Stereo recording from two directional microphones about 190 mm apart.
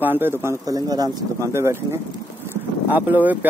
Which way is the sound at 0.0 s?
10° right (ahead or behind).